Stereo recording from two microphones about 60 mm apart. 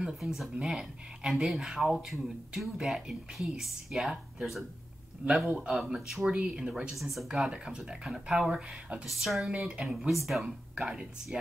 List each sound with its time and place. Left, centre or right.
0.0 s speech: centre
6.2 s speech: centre
6.9 s speech: centre
7.2 s speech: centre
9.6 s speech: centre
9.9 s speech: centre